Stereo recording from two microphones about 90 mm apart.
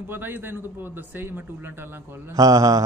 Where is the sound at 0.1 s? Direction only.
25° right (ahead or behind).